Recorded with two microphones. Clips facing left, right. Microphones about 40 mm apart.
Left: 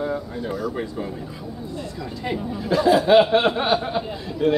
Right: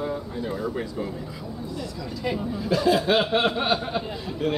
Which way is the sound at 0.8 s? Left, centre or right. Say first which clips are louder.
Left 2 dB; centre.